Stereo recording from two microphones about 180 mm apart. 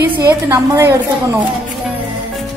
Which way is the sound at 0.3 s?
15° right (ahead or behind).